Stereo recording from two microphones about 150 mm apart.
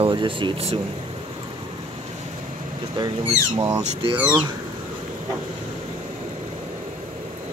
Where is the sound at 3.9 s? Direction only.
40° right (ahead or behind).